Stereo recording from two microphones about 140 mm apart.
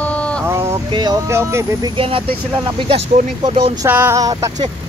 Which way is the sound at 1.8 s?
40° right (ahead or behind).